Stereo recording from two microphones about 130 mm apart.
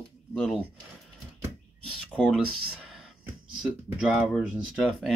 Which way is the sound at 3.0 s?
5° right (ahead or behind).